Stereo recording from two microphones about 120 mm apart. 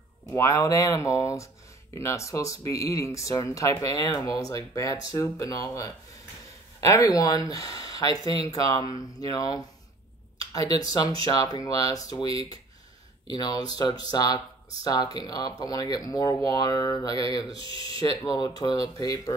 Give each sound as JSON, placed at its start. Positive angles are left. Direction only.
{"t": 0.3, "sound": "speech", "side_deg": 25}
{"t": 10.7, "sound": "speech", "side_deg": 30}
{"t": 13.3, "sound": "speech", "side_deg": 35}
{"t": 17.6, "sound": "speech", "side_deg": -45}
{"t": 17.9, "sound": "speech", "side_deg": 30}